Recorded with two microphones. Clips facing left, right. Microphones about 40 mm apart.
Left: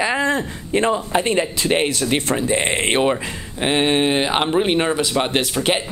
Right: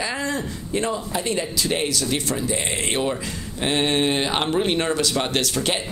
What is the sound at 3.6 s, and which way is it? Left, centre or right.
Speech, left.